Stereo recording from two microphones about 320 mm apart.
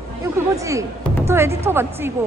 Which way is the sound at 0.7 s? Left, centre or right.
Centre.